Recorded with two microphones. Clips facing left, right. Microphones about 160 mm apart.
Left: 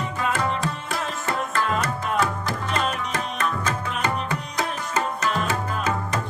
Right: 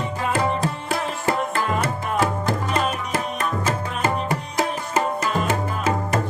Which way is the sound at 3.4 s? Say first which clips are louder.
Right 2 dB; 30° right (ahead or behind).